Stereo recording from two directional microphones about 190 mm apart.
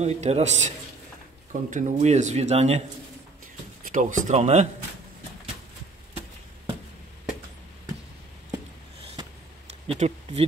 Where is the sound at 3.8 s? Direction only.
45° right (ahead or behind).